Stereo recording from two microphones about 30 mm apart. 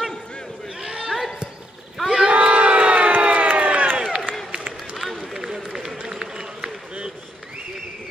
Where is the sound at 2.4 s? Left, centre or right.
Right.